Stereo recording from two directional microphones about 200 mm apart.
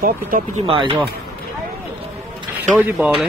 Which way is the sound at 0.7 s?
25° right (ahead or behind).